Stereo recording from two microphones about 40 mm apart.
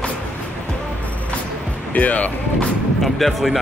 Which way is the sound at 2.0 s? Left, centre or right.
Left.